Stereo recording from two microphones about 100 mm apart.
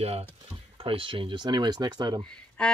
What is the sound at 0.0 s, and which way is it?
Speech, 90° right.